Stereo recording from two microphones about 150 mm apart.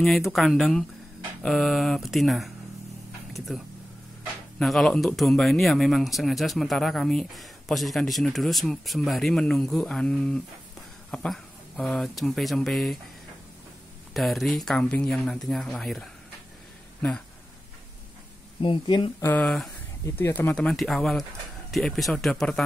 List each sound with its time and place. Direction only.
0.0 s a man's voice: centre (ahead or behind)
14.1 s a man's voice: centre (ahead or behind)
18.6 s speech: 35° left (ahead or behind)
19.4 s a man's voice: centre (ahead or behind)
20.2 s a man's voice: 15° left (ahead or behind)